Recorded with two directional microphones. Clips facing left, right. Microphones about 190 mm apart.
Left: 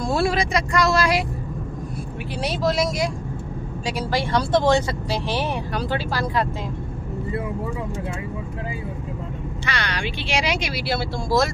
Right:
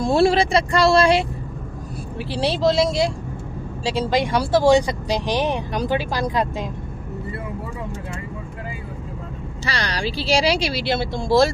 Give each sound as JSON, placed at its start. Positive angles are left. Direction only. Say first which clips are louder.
{"t": 0.0, "sound": "speech", "louder": "right 5 dB", "side_deg": -25}
{"t": 2.3, "sound": "speech", "louder": "right 4 dB", "side_deg": -30}
{"t": 9.7, "sound": "speech", "louder": "right 3 dB", "side_deg": -35}